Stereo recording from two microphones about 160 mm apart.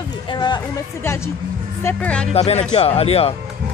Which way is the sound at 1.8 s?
5° left (ahead or behind).